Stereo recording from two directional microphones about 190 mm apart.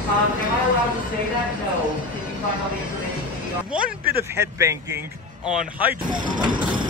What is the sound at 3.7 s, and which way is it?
A man's voice, 10° right (ahead or behind).